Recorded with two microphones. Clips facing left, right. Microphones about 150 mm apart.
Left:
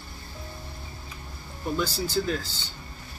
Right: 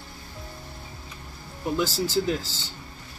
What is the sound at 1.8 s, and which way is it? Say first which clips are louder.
Speech: right 2 dB; 90° right.